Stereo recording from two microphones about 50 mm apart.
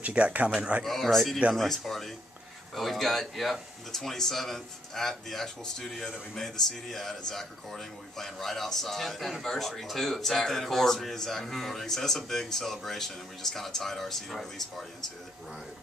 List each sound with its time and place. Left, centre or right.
0.0 s speech: right
0.8 s speech: centre